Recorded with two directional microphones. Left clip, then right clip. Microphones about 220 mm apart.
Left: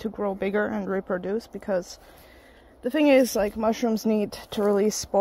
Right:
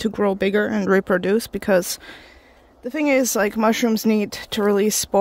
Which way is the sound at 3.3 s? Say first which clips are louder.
Right 5 dB; 35° right (ahead or behind).